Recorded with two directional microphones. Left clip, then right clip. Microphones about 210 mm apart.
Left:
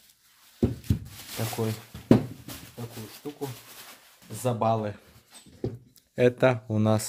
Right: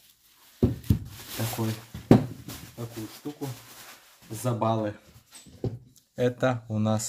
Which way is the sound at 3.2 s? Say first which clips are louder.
Left 2 dB; 45° left (ahead or behind).